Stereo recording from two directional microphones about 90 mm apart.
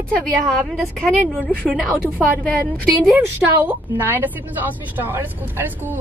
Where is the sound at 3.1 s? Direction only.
20° right (ahead or behind).